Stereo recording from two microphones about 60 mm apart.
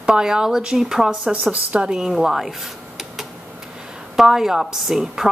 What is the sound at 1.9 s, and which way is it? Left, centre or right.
A woman's voice, centre.